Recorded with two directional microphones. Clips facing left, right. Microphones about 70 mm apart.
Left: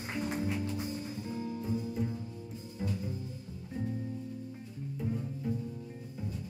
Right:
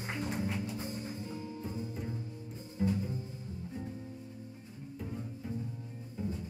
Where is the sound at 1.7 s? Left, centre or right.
Right.